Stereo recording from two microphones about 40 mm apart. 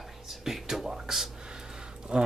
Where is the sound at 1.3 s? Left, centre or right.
Centre.